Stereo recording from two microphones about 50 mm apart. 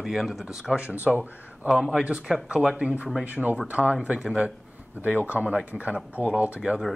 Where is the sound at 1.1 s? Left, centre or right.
Right.